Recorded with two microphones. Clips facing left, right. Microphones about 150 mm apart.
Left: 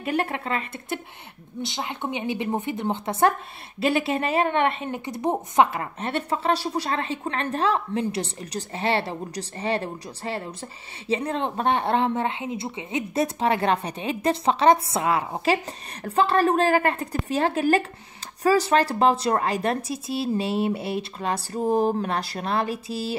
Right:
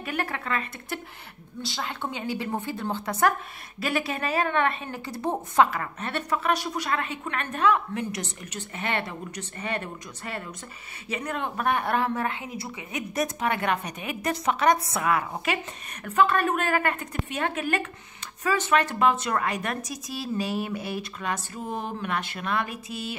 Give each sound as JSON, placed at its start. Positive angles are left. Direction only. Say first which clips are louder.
{"t": 0.0, "sound": "a woman's voice", "louder": "left 5 dB", "side_deg": 25}